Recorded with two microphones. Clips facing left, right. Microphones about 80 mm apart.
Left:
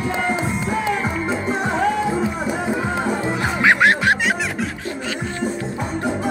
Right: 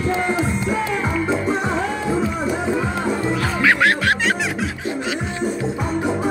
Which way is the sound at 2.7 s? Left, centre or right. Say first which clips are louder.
Even; centre.